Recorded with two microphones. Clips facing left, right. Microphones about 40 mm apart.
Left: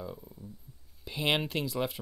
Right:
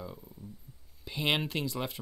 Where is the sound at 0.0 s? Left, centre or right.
Centre.